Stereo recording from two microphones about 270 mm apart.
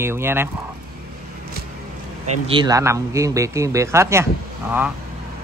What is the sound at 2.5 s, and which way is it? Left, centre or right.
A man's voice, centre.